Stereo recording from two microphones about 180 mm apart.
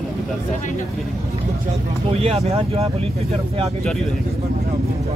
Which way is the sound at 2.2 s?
35° right (ahead or behind).